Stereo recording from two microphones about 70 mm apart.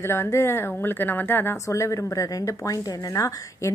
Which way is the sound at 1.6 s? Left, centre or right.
Left.